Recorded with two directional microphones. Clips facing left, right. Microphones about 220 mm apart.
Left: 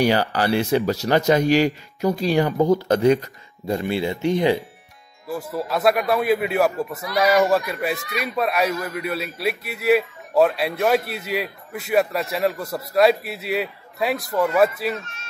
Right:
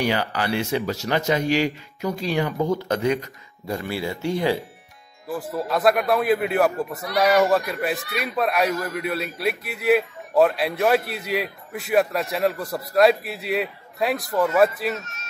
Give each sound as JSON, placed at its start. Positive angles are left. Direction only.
{"t": 0.0, "sound": "speech", "side_deg": 35}
{"t": 3.6, "sound": "speech", "side_deg": 20}
{"t": 5.3, "sound": "speech", "side_deg": 0}